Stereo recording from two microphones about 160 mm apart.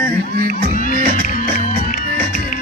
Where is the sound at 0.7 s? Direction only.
60° left (ahead or behind).